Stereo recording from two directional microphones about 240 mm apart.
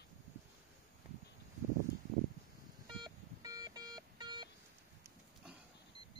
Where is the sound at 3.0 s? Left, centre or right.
Centre.